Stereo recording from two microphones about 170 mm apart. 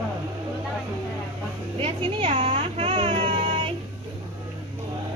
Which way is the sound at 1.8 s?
35° right (ahead or behind).